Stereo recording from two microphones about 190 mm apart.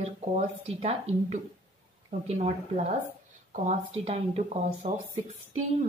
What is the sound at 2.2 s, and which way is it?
Speech, 35° right (ahead or behind).